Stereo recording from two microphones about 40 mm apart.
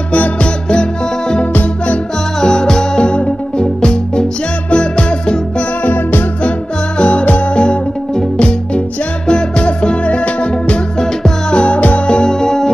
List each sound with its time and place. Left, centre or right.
0.4 s music: left
1.4 s music: left
2.4 s music: centre
5.9 s music: left
7.0 s music: left
12.2 s music: centre